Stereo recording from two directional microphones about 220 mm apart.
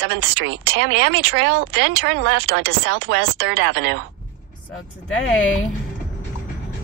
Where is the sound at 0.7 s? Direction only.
55° right (ahead or behind).